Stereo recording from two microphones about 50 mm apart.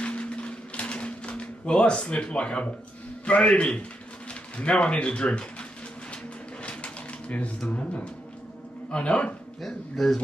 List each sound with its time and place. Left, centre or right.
0.0 s a sound: left
3.3 s a man's voice: left
6.6 s pigeon: left
8.9 s a man's voice: left
9.6 s speech: centre